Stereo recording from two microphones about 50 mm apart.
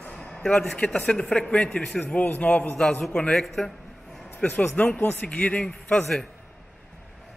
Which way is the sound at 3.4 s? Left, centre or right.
Centre.